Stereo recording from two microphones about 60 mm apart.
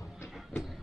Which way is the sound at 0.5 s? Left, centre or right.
Left.